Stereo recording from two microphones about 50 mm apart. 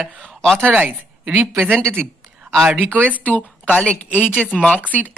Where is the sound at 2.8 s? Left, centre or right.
Right.